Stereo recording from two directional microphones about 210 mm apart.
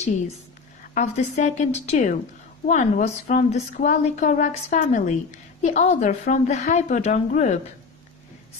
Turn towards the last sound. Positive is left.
turn(degrees=35)  # may be behind; listen again after turning